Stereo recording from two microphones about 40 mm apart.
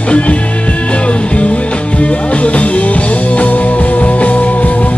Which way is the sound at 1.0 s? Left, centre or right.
Left.